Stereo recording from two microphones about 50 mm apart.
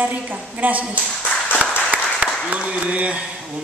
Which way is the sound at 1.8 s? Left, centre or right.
Centre.